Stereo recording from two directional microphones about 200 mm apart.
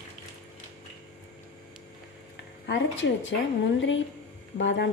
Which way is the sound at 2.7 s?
65° left (ahead or behind).